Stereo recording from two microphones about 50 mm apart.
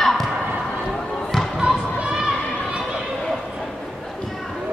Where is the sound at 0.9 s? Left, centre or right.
Centre.